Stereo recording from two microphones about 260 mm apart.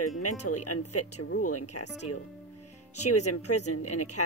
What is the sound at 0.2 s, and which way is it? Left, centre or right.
Speech, left.